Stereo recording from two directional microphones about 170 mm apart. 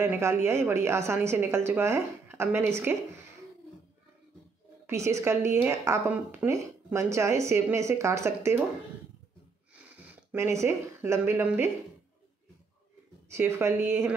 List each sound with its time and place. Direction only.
0.0 s a woman's voice: 15° right (ahead or behind)
4.8 s a woman's voice: 15° right (ahead or behind)
10.3 s a woman's voice: 15° right (ahead or behind)
13.3 s a woman's voice: 15° right (ahead or behind)